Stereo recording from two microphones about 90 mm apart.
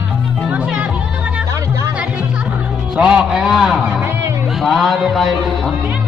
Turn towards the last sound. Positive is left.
turn(degrees=0)  # may be behind; listen again after turning